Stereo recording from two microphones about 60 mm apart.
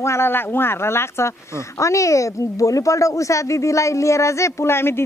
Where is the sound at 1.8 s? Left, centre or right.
Left.